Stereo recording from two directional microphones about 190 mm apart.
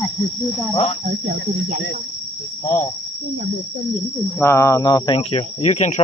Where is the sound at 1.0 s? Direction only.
40° right (ahead or behind).